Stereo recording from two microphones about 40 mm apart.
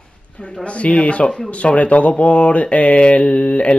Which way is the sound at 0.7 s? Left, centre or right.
Left.